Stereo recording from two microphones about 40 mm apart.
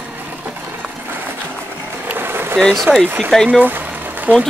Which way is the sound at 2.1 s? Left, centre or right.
Right.